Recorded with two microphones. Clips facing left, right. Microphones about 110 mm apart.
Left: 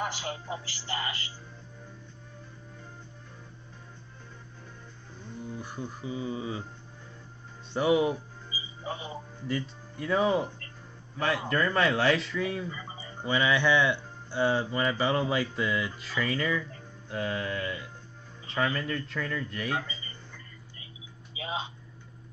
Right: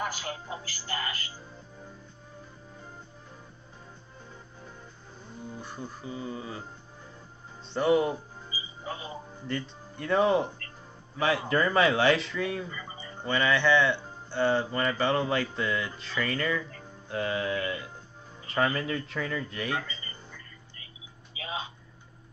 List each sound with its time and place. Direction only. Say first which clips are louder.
0.0 s speech: even; 20° left (ahead or behind)
5.6 s speech: left 2 dB; 15° left (ahead or behind)
7.7 s speech: even; 10° left (ahead or behind)
8.5 s music: left 1 dB; 20° left (ahead or behind)
9.5 s speech: left 1 dB; 5° left (ahead or behind)
21.4 s a sound: left 2 dB; 20° left (ahead or behind)